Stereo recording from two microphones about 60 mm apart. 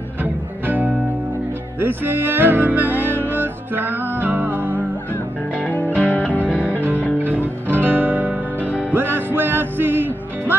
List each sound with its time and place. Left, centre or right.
0.2 s music: right
5.9 s music: left
6.8 s music: right